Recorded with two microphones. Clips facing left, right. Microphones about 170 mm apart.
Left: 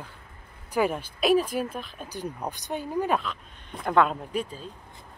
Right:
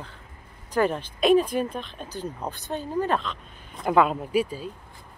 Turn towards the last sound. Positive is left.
turn(degrees=-10)  # may be behind; listen again after turning